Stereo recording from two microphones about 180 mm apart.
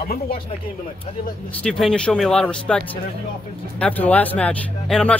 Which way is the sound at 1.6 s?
5° left (ahead or behind).